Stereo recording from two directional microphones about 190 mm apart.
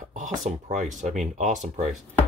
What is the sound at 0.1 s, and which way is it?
Speech, 40° right (ahead or behind).